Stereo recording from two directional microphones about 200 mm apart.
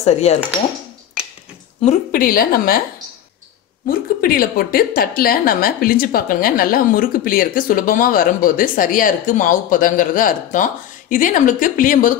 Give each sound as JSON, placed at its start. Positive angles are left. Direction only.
{"t": 0.0, "sound": "speech", "side_deg": 35}
{"t": 1.9, "sound": "a woman's voice", "side_deg": 45}
{"t": 4.2, "sound": "a woman's voice", "side_deg": 45}